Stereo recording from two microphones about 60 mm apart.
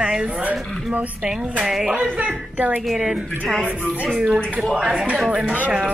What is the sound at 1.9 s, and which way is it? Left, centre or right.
Speech, right.